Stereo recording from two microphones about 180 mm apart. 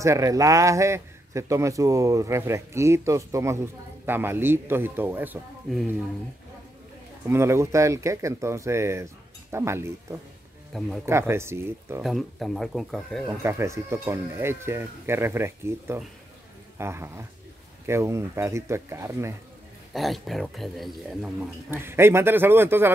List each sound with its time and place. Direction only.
0.0 s a man's voice: 15° right (ahead or behind)
7.2 s a man's voice: 15° right (ahead or behind)
10.7 s speech: centre (ahead or behind)
11.1 s a man's voice: 15° right (ahead or behind)
12.0 s speech: centre (ahead or behind)
13.4 s a man's voice: 15° right (ahead or behind)
19.9 s speech: centre (ahead or behind)
21.6 s a man's voice: 15° right (ahead or behind)